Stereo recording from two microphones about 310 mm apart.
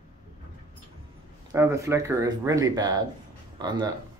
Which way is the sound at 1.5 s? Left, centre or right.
Centre.